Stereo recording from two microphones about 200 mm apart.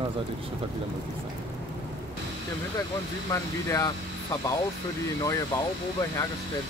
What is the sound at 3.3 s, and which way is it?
Speech, 15° left (ahead or behind).